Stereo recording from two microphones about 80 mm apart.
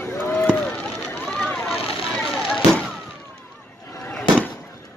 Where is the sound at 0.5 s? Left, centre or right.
Centre.